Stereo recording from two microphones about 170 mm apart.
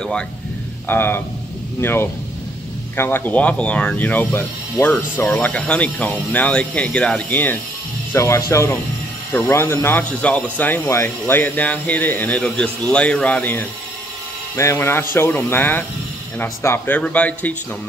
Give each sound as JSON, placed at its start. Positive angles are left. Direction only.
{"t": 0.8, "sound": "speech", "side_deg": 10}